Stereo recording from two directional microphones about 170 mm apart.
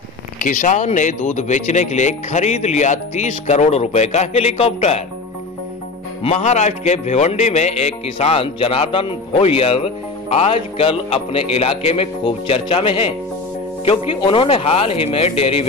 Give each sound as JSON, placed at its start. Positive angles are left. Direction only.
{"t": 0.4, "sound": "speech", "side_deg": 50}
{"t": 6.2, "sound": "a man's voice", "side_deg": 40}